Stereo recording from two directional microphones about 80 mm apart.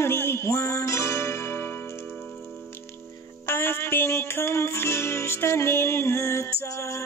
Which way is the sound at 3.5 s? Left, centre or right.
Left.